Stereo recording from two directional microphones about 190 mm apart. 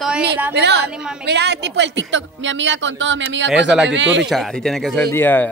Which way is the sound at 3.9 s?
75° right (ahead or behind).